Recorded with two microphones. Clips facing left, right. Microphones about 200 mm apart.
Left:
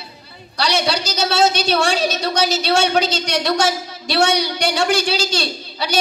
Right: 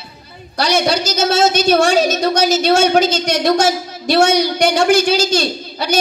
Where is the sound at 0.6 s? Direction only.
45° right (ahead or behind).